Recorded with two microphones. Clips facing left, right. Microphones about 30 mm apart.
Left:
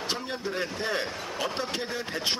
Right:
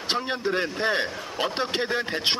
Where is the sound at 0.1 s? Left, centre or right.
Right.